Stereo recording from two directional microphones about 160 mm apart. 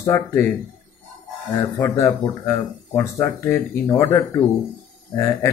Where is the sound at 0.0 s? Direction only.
20° left (ahead or behind).